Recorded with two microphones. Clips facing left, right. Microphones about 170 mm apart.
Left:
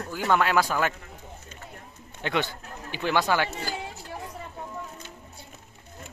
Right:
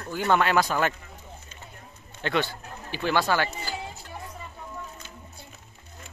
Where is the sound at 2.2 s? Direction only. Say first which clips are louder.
Right 1 dB; 15° left (ahead or behind).